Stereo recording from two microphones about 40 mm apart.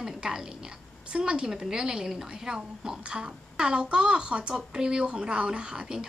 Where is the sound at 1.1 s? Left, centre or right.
Right.